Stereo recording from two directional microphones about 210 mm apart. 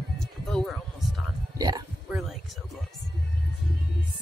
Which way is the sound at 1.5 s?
20° right (ahead or behind).